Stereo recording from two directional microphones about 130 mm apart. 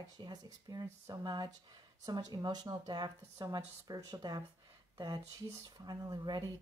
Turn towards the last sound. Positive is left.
turn(degrees=-30)  # may be behind; listen again after turning